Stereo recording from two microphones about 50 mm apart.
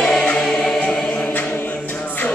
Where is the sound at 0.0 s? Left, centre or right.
Centre.